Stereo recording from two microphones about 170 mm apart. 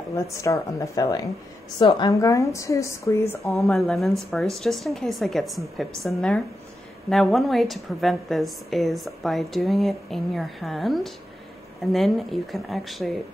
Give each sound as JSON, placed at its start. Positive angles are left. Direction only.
{"t": 0.1, "sound": "a woman's voice", "side_deg": 20}
{"t": 3.5, "sound": "a woman's voice", "side_deg": 0}